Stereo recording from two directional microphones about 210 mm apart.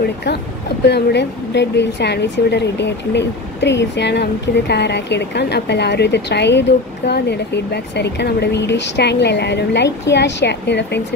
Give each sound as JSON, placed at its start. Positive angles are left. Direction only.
{"t": 0.0, "sound": "speech", "side_deg": 50}